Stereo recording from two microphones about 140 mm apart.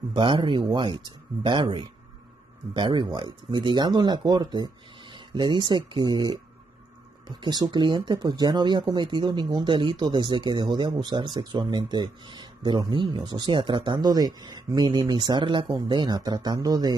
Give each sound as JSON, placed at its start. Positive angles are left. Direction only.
{"t": 0.1, "sound": "speech", "side_deg": -35}
{"t": 7.4, "sound": "a man's voice", "side_deg": -30}